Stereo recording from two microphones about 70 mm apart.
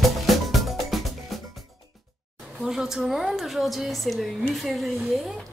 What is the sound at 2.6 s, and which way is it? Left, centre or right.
A woman's voice, centre.